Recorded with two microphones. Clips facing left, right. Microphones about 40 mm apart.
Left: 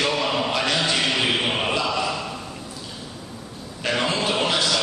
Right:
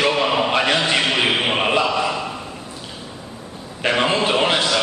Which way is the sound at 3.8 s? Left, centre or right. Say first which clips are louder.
Right 5 dB; right.